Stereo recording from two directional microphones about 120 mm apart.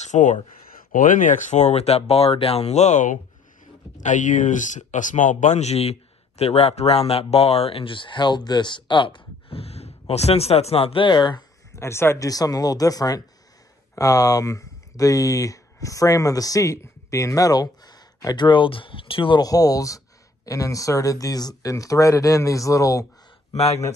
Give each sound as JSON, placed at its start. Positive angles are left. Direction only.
{"t": 0.0, "sound": "speech", "side_deg": 85}
{"t": 11.7, "sound": "speech", "side_deg": 20}
{"t": 19.4, "sound": "speech", "side_deg": 30}
{"t": 23.5, "sound": "a man's voice", "side_deg": 60}